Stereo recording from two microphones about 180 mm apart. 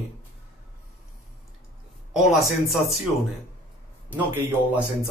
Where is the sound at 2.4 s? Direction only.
Centre (ahead or behind).